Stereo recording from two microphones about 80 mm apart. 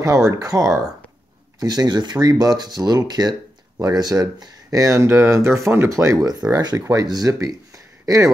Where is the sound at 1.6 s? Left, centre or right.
Right.